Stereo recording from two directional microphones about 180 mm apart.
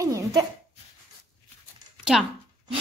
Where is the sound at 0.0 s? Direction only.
20° right (ahead or behind).